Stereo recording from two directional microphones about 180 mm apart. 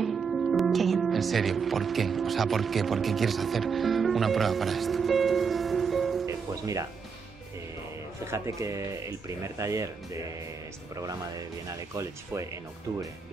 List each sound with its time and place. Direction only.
0.0 s speech: centre (ahead or behind)
6.2 s music: 20° right (ahead or behind)
8.3 s speech: 15° right (ahead or behind)